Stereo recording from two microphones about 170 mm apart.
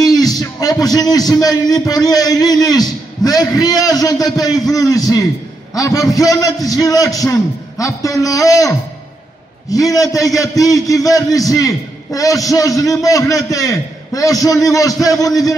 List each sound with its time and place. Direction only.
0.0 s a man's voice: 20° left (ahead or behind)